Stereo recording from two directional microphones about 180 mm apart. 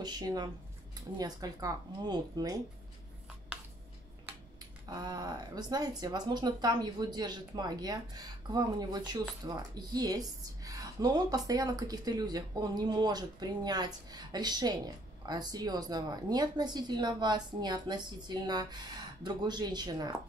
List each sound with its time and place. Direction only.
0.0 s a woman's voice: 20° right (ahead or behind)
4.8 s a woman's voice: 20° right (ahead or behind)